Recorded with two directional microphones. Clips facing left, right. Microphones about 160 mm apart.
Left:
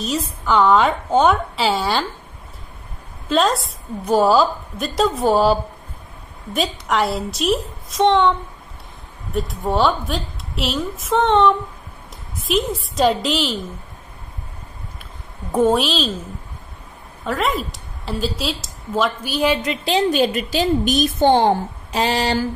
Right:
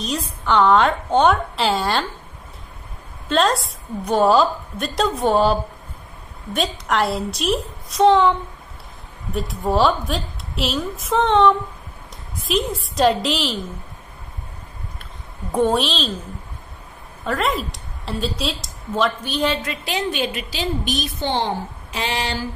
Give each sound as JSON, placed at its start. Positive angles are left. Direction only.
{"t": 0.0, "sound": "a woman's voice", "side_deg": 0}
{"t": 3.3, "sound": "a woman's voice", "side_deg": 0}
{"t": 15.5, "sound": "a woman's voice", "side_deg": 5}
{"t": 17.2, "sound": "a woman's voice", "side_deg": 0}
{"t": 19.7, "sound": "a woman's voice", "side_deg": 30}